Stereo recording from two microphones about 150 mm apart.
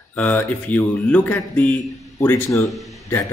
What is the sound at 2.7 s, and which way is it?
Speech, centre (ahead or behind).